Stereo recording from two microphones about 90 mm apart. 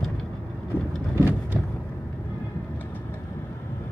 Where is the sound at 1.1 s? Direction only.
25° right (ahead or behind).